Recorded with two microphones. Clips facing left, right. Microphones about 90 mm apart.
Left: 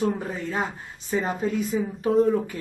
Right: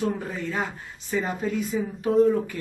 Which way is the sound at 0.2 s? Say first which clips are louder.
Left 1 dB; 30° left (ahead or behind).